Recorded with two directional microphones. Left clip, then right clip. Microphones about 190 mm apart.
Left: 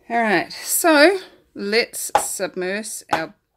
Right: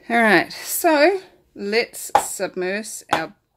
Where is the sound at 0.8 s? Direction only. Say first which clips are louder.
Left 2 dB; 20° left (ahead or behind).